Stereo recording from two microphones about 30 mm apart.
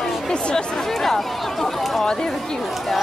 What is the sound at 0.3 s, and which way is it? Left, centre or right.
Speech, left.